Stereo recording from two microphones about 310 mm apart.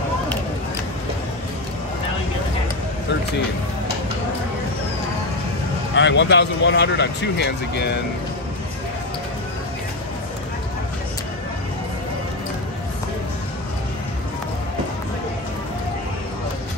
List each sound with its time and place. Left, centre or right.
5.9 s speech: left